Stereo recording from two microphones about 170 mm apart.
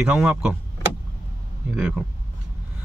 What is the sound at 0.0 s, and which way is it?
Speech, 5° right (ahead or behind).